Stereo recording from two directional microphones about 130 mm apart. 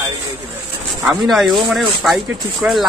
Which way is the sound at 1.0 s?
Centre (ahead or behind).